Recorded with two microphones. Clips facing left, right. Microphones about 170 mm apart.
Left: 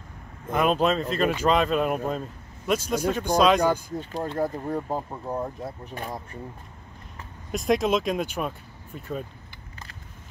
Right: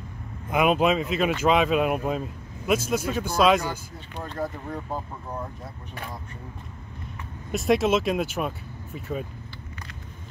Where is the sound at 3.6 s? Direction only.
35° left (ahead or behind).